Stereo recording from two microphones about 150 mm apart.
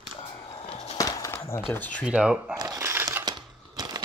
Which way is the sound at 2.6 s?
20° right (ahead or behind).